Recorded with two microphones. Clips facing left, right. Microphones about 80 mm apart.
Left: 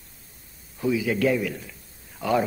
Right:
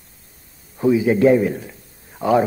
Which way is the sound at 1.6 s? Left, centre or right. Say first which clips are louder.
Right 6 dB; right.